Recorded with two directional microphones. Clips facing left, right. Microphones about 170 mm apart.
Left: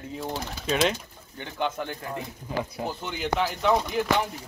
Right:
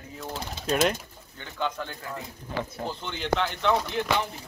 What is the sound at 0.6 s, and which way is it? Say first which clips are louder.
Speech: even; centre (ahead or behind).